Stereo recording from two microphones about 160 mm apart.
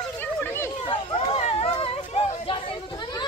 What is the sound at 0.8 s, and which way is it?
Chatter, 35° left (ahead or behind).